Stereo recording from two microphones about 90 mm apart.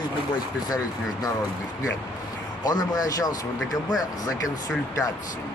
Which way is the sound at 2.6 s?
50° left (ahead or behind).